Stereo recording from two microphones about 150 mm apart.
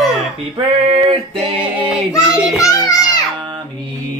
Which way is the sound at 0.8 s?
40° right (ahead or behind).